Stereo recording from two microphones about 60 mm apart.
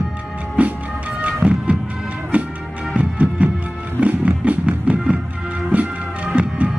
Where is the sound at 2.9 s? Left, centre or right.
Right.